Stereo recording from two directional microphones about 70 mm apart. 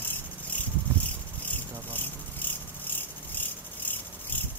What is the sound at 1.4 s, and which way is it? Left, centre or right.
Insect, left.